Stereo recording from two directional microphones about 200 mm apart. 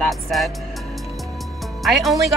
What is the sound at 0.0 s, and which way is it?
Music, centre (ahead or behind).